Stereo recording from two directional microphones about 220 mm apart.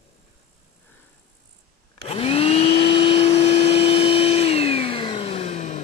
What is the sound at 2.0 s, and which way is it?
Vacuum cleaner, 25° left (ahead or behind).